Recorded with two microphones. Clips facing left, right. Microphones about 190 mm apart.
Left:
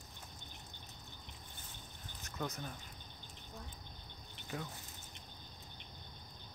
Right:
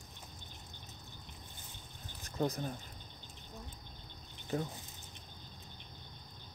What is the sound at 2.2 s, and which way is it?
Speech, 35° right (ahead or behind).